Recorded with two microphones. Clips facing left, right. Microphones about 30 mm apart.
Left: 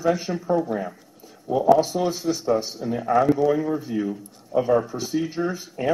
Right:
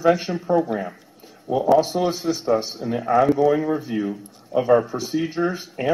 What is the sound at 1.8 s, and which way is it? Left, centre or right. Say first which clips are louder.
Speech: right 2 dB; centre.